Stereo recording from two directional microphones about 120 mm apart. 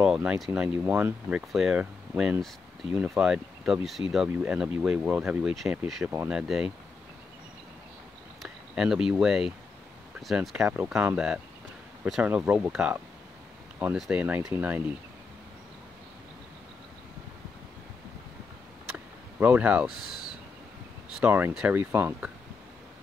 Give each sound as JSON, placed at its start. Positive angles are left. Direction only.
{"t": 0.0, "sound": "speech", "side_deg": -5}
{"t": 6.0, "sound": "speech", "side_deg": -10}
{"t": 8.4, "sound": "speech", "side_deg": -5}
{"t": 10.6, "sound": "speech", "side_deg": -20}
{"t": 19.4, "sound": "speech", "side_deg": -15}
{"t": 21.2, "sound": "speech", "side_deg": -15}